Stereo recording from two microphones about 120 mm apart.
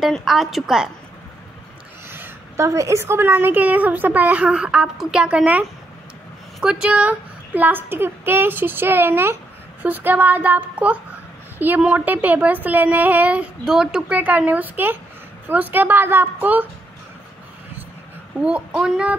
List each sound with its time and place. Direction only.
0.0 s a woman's voice: 5° right (ahead or behind)
2.0 s a child's voice: 20° right (ahead or behind)
18.4 s a child's voice: 10° right (ahead or behind)